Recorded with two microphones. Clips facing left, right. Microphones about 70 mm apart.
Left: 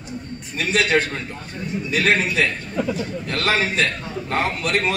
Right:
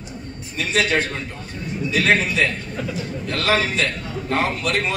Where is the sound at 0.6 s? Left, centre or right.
Left.